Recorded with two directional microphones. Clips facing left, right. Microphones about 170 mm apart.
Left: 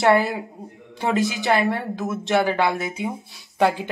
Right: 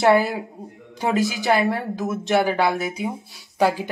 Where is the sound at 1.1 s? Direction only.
20° left (ahead or behind).